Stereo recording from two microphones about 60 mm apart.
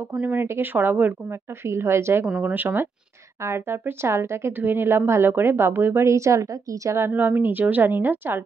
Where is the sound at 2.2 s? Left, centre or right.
Centre.